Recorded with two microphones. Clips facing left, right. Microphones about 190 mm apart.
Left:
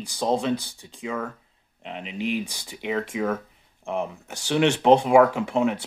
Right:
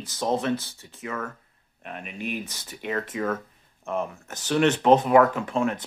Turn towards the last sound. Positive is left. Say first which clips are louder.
# left 2 dB
turn(degrees=15)  # may be behind; listen again after turning